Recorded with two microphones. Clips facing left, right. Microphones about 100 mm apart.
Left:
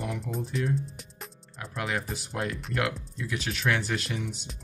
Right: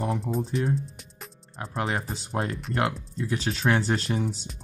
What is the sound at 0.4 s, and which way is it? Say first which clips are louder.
Speech: right 3 dB; 35° right (ahead or behind).